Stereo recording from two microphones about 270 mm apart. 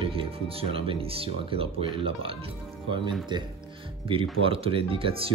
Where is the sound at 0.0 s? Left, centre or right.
Centre.